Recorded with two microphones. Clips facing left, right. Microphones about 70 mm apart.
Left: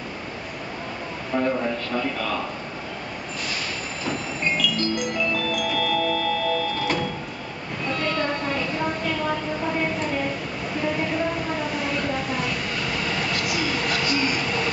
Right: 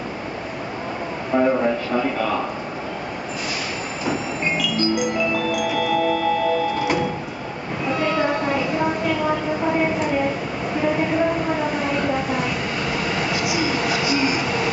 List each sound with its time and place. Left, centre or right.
1.3 s a sound: centre
1.9 s speech: centre
4.0 s music: centre
7.8 s train: centre
10.8 s a sound: centre
13.0 s train: centre